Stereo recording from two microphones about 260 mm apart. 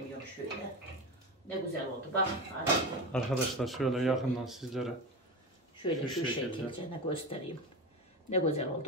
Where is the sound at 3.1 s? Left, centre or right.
Centre.